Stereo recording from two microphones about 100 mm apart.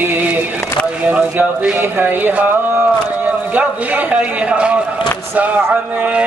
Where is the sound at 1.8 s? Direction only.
20° right (ahead or behind).